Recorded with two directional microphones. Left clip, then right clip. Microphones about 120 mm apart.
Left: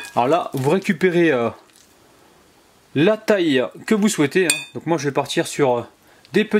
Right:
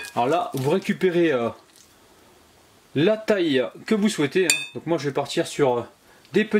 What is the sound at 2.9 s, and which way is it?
Speech, 35° left (ahead or behind).